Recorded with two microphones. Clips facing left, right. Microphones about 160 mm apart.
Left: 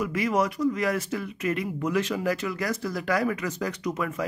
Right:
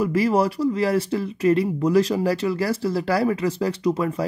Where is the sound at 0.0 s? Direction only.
35° right (ahead or behind).